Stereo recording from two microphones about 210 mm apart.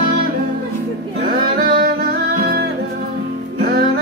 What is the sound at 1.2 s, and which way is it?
Music, 50° right (ahead or behind).